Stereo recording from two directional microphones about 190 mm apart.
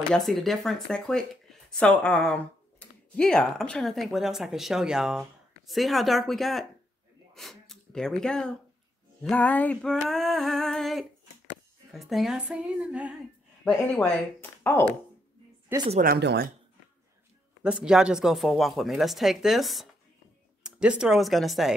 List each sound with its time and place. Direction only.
0.1 s speech: centre (ahead or behind)
14.6 s speech: 10° left (ahead or behind)
16.0 s speech: 55° right (ahead or behind)
17.6 s speech: 5° right (ahead or behind)